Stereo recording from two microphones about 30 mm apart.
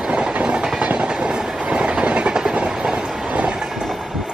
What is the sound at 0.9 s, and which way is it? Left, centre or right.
Train, right.